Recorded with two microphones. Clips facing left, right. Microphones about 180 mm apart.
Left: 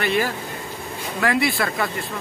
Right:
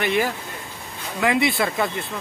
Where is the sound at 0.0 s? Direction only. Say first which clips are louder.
Even; 20° right (ahead or behind).